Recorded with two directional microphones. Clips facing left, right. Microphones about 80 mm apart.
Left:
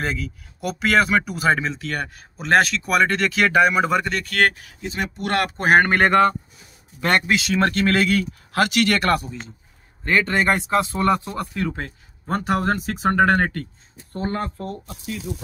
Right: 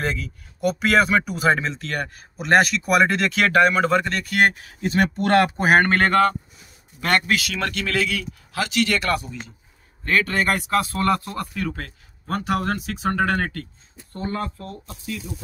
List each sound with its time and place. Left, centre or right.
0.0 s speech: centre
4.6 s speech: right
5.2 s speech: right
5.6 s speech: centre
5.9 s a man's voice: centre; by 9.4 s left
10.0 s a man's voice: left
12.4 s speech: left
15.1 s speech: left